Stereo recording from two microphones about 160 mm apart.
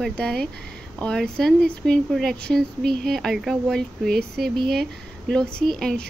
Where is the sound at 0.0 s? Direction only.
5° left (ahead or behind).